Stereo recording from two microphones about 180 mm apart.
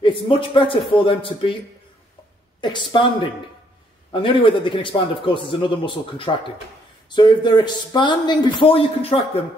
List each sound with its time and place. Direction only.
0.0 s a man's voice: 30° left (ahead or behind)
2.6 s a man's voice: 25° left (ahead or behind)
4.1 s a man's voice: 30° left (ahead or behind)